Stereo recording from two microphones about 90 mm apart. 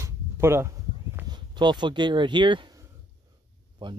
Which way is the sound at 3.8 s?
65° right (ahead or behind).